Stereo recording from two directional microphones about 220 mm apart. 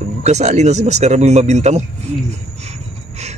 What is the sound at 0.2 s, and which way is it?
A man's voice, 30° right (ahead or behind).